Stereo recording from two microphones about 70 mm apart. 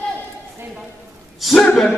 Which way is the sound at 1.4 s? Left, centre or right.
Centre.